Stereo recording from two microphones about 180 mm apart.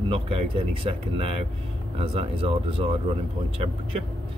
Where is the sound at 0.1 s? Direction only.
30° right (ahead or behind).